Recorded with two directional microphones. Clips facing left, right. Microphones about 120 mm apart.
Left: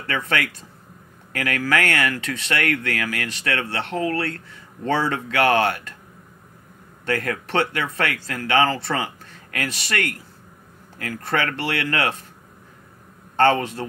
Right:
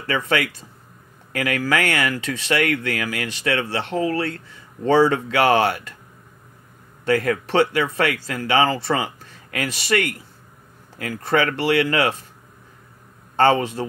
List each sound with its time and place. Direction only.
0.0 s speech: 15° right (ahead or behind)
7.1 s speech: 15° right (ahead or behind)
13.4 s speech: 15° right (ahead or behind)